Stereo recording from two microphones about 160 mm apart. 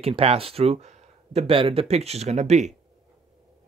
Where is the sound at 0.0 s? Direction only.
40° right (ahead or behind).